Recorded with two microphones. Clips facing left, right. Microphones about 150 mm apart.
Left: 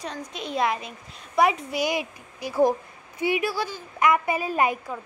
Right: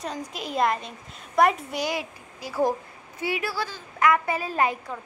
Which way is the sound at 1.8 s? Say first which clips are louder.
Left 3 dB; 15° left (ahead or behind).